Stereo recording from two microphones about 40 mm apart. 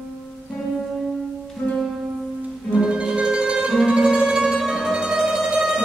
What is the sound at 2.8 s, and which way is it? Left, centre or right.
Music, centre.